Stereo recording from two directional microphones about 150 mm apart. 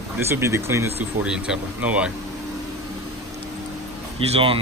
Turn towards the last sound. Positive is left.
turn(degrees=-35)  # may be behind; listen again after turning